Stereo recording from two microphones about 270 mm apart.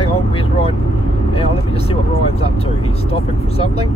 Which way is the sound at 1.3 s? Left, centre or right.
Left.